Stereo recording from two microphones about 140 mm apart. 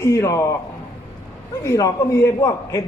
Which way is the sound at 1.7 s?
20° left (ahead or behind).